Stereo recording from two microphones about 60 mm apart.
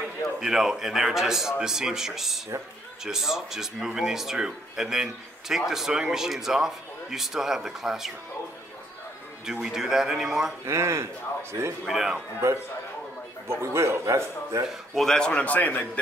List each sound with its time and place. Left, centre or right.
0.4 s speech: centre
9.5 s speech: centre
10.6 s a man's voice: right
11.9 s speech: centre
12.4 s a man's voice: right
15.0 s a man's voice: centre; by 16.0 s left